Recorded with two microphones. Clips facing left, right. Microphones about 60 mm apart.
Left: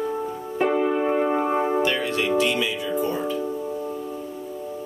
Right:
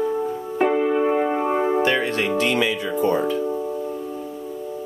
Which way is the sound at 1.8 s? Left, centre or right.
Right.